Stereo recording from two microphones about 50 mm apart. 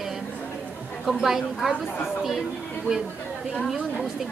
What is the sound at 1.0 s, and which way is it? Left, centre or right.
Speech, centre.